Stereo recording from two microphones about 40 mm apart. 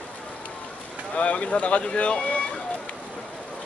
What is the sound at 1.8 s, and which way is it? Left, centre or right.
Speech, left.